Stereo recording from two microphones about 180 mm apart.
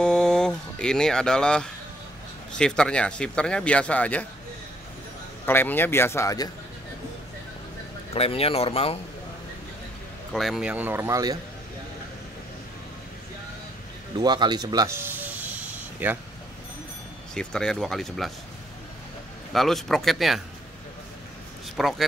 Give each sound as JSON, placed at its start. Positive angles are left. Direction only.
{"t": 0.0, "sound": "a sound", "side_deg": 5}
{"t": 2.5, "sound": "speech", "side_deg": 5}
{"t": 5.4, "sound": "a man's voice", "side_deg": 10}
{"t": 8.1, "sound": "speech", "side_deg": 35}
{"t": 10.3, "sound": "speech", "side_deg": 0}
{"t": 14.1, "sound": "snort", "side_deg": -25}
{"t": 17.3, "sound": "speech", "side_deg": 5}
{"t": 19.5, "sound": "speech", "side_deg": 0}
{"t": 21.7, "sound": "speech", "side_deg": 0}